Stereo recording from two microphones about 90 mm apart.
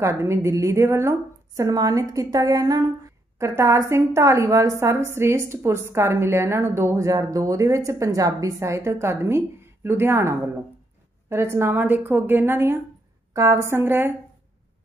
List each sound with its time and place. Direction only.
0.0 s a woman's voice: 35° right (ahead or behind)